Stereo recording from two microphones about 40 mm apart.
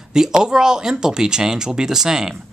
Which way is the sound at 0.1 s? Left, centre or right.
Centre.